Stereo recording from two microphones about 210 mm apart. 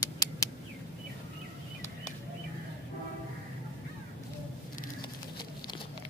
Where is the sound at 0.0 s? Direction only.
15° left (ahead or behind).